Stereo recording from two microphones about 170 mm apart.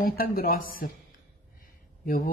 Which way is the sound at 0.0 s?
60° left (ahead or behind).